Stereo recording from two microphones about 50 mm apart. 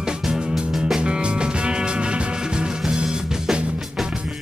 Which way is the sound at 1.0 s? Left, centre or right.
Centre.